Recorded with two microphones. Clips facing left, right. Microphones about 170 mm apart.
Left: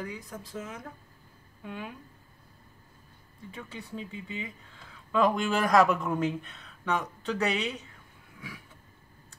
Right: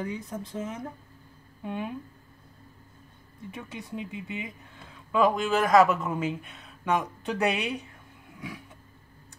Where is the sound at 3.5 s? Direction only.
15° right (ahead or behind).